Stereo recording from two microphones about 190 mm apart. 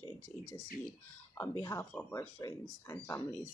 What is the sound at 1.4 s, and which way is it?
Speech, 15° left (ahead or behind).